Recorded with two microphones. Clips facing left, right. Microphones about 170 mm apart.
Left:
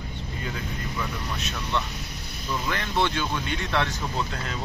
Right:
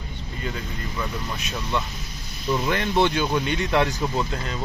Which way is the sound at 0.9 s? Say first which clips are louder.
Right 3 dB; 5° right (ahead or behind).